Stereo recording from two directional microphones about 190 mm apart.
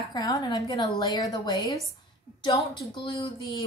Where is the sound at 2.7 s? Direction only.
20° left (ahead or behind).